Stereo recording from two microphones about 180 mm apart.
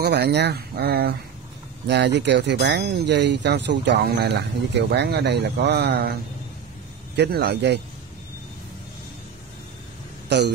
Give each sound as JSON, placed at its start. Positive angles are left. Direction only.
{"t": 0.0, "sound": "speech", "side_deg": -65}
{"t": 1.9, "sound": "speech", "side_deg": -70}
{"t": 7.2, "sound": "speech", "side_deg": -60}
{"t": 10.3, "sound": "speech", "side_deg": -70}